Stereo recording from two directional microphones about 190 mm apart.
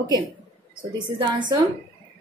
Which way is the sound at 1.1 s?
25° right (ahead or behind).